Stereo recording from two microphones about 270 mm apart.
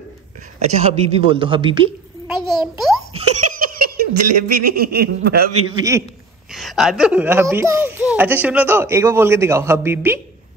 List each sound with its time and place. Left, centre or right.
0.8 s a man's voice: right
2.2 s a sound: centre
3.2 s giggle: right
4.2 s speech: right
4.6 s speech: right
5.8 s speech: centre
6.5 s speech: centre